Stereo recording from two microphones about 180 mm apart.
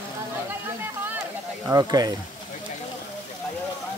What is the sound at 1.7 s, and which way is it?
Speech, 20° right (ahead or behind).